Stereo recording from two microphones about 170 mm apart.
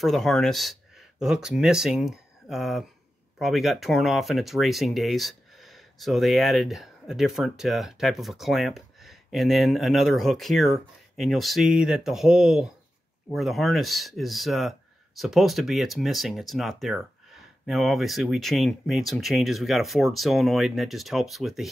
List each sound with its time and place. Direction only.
0.0 s speech: centre (ahead or behind)